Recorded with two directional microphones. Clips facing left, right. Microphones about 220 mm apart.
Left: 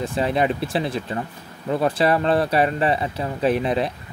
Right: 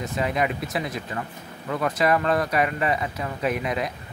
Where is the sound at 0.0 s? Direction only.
30° left (ahead or behind).